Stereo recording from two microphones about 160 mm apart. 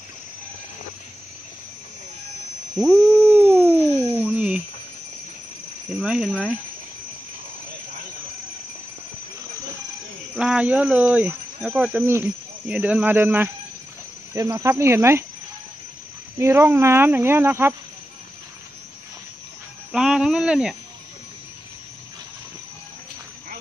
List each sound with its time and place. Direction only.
2.7 s a sound: centre (ahead or behind)
3.1 s busy signal: 15° right (ahead or behind)
5.9 s speech: 5° right (ahead or behind)
10.3 s speech: 5° right (ahead or behind)
16.3 s speech: 15° right (ahead or behind)
19.9 s a sound: 5° right (ahead or behind)